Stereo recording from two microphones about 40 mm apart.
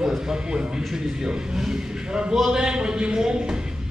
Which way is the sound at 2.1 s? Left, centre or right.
Centre.